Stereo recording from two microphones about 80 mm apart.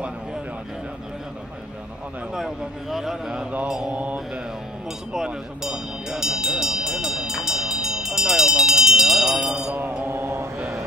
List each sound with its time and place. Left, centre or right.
2.3 s a man's voice: centre
10.0 s mantra: right